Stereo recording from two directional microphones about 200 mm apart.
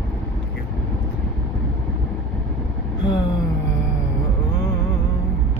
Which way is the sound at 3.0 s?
25° left (ahead or behind).